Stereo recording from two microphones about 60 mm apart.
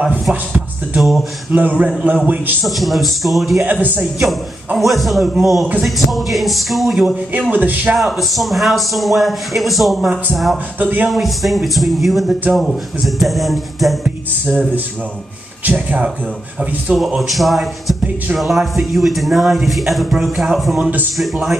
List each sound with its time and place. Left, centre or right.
0.9 s a man's voice: centre
1.5 s a man's voice: right
2.2 s a man's voice: right
2.6 s a man's voice: centre
4.7 s a man's voice: centre
7.5 s a man's voice: right
7.9 s a man's voice: centre
10.8 s a man's voice: right
11.1 s a man's voice: centre
14.0 s a man's voice: right
17.2 s a man's voice: centre